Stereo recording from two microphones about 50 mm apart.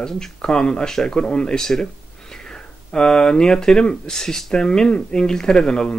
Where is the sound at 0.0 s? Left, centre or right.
Centre.